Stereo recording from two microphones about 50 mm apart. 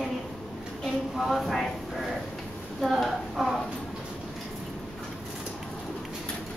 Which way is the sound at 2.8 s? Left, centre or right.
Centre.